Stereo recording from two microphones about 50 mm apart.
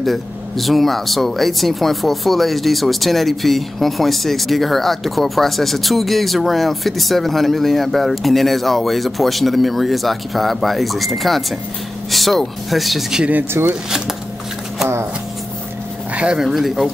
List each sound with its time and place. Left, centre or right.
0.0 s speech: centre
13.5 s speech: right
16.2 s speech: centre